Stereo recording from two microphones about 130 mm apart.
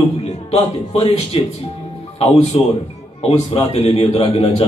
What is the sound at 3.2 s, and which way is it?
A man's voice, 50° left (ahead or behind).